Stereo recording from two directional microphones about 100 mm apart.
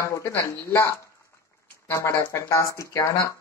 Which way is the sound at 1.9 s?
25° left (ahead or behind).